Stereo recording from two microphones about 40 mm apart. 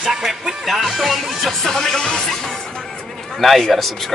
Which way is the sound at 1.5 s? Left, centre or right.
Centre.